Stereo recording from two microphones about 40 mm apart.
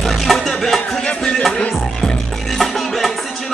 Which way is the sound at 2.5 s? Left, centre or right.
Centre.